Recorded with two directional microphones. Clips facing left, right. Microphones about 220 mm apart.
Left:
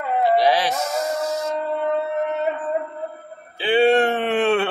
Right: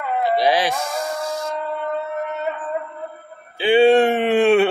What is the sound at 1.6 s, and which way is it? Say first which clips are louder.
Music: left 3 dB; 30° left (ahead or behind).